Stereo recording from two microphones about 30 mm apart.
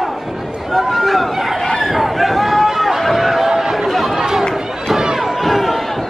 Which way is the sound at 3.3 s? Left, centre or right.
Centre.